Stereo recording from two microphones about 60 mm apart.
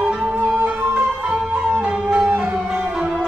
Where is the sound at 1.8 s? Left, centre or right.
Centre.